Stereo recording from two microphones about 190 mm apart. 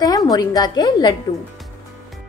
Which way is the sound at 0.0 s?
20° left (ahead or behind).